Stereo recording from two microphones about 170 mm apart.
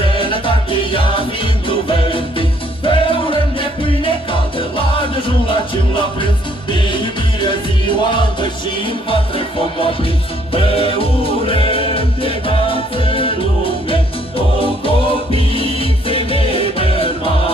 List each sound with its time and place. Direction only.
0.0 s music: 30° left (ahead or behind)
10.5 s music: 30° left (ahead or behind)
14.6 s music: 30° left (ahead or behind)